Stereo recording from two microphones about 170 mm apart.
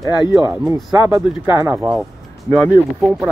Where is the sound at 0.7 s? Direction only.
15° right (ahead or behind).